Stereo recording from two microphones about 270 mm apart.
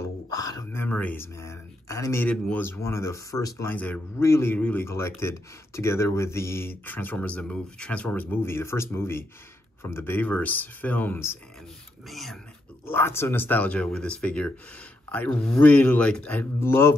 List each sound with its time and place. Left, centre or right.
0.3 s speech: centre